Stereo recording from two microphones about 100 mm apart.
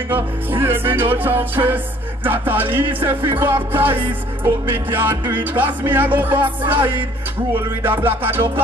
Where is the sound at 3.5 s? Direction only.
60° right (ahead or behind).